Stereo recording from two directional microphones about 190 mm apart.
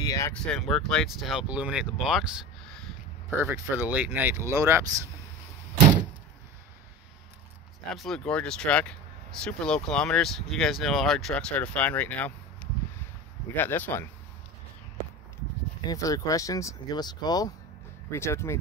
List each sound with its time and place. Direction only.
0.0 s a sound: 20° left (ahead or behind)
0.5 s speech: 5° left (ahead or behind)
3.3 s speech: 15° right (ahead or behind)
7.9 s speech: centre (ahead or behind)
15.9 s speech: 20° left (ahead or behind)